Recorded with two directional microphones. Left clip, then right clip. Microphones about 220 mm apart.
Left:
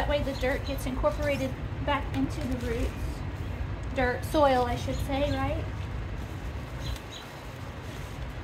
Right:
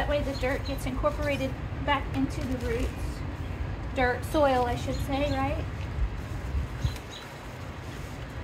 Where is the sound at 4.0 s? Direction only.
20° left (ahead or behind).